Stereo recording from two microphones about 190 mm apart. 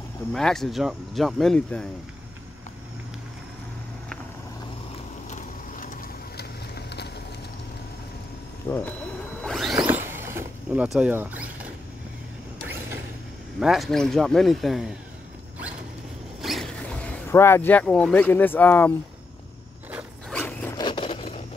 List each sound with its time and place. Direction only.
0.3 s speech: centre (ahead or behind)
5.3 s vehicle: 45° left (ahead or behind); by 7.1 s 60° left (ahead or behind)
8.6 s speech: 10° left (ahead or behind)
9.4 s a sound: centre (ahead or behind)
9.8 s vehicle: 10° right (ahead or behind)
10.2 s a sound: 10° right (ahead or behind)
13.6 s speech: centre (ahead or behind)
16.3 s speech: centre (ahead or behind)
19.9 s zipper: 5° right (ahead or behind)
20.3 s zipper: 10° left (ahead or behind)
20.8 s scrape: 25° left (ahead or behind)